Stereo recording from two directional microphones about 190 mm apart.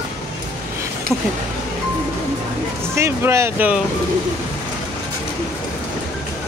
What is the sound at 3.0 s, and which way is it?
Speech, 15° right (ahead or behind).